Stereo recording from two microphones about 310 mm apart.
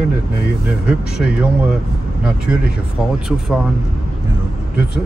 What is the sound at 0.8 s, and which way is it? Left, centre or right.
Speech, centre.